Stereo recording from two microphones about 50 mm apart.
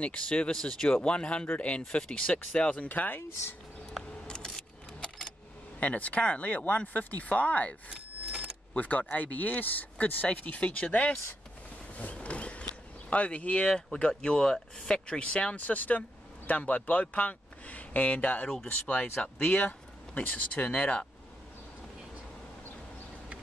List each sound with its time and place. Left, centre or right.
0.0 s speech: left
4.3 s keys jangling: centre
5.8 s speech: left
8.7 s speech: left
11.9 s a sound: left
13.1 s speech: left
15.5 s speech: left